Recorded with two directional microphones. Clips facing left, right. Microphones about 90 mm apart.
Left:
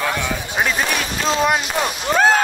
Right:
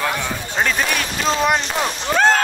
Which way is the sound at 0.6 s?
5° left (ahead or behind).